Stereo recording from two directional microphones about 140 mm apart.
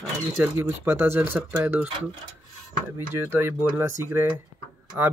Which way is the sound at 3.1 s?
15° right (ahead or behind).